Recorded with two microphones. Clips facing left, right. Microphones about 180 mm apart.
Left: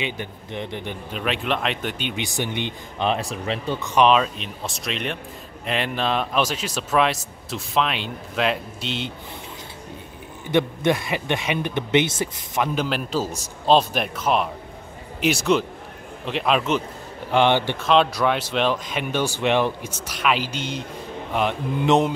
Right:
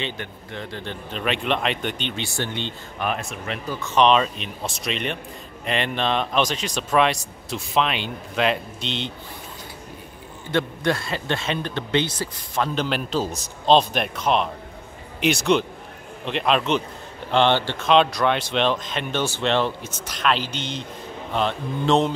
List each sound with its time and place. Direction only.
0.0 s speech: 15° left (ahead or behind)
1.1 s speech: centre (ahead or behind)
3.1 s speech: 30° left (ahead or behind)
3.9 s a man's voice: 5° left (ahead or behind)
10.5 s speech: 15° left (ahead or behind)
12.6 s a man's voice: 5° left (ahead or behind)